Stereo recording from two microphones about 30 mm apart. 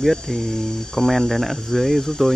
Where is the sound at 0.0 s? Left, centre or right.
Centre.